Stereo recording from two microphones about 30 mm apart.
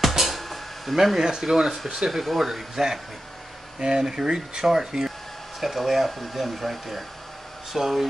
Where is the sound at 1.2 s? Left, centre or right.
Centre.